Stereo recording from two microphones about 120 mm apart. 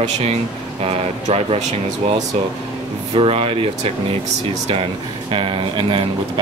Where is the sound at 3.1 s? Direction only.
50° right (ahead or behind).